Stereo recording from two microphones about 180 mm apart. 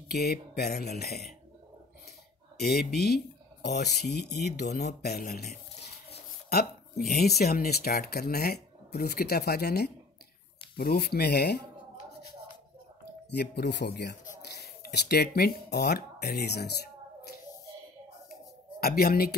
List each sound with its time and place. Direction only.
0.1 s speech: 60° left (ahead or behind)
2.6 s speech: 60° left (ahead or behind)
6.5 s speech: 60° left (ahead or behind)
13.3 s speech: 65° left (ahead or behind)
18.8 s speech: 60° left (ahead or behind)